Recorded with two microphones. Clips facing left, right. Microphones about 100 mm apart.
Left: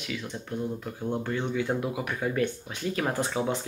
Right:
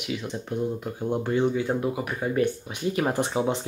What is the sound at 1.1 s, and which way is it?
Speech, 15° right (ahead or behind).